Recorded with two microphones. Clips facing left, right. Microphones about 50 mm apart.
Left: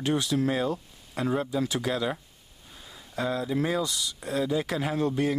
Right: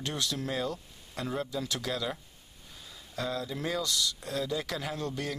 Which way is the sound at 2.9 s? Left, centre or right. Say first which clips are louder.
Left 5 dB; centre.